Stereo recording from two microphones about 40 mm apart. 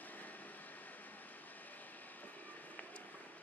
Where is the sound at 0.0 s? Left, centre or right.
Left.